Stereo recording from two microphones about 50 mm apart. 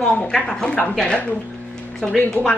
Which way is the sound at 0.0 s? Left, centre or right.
Centre.